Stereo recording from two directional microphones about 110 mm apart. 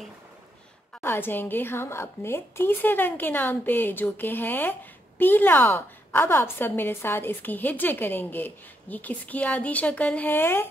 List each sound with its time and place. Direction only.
1.0 s a woman's voice: 20° left (ahead or behind)